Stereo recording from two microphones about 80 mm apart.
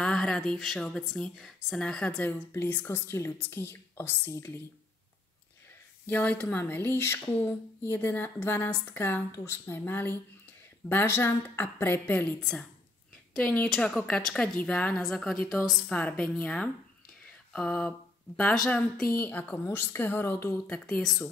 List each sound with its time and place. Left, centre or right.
0.0 s a woman's voice: centre
2.7 s a woman's voice: left
6.0 s a woman's voice: left
12.4 s a woman's voice: centre
15.0 s a woman's voice: centre
15.9 s a woman's voice: centre
17.5 s a sound: centre
18.5 s a woman's voice: centre
19.0 s a woman's voice: left
19.5 s a woman's voice: left
20.8 s a woman's voice: centre